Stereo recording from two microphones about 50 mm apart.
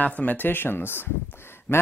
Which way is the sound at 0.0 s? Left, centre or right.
Left.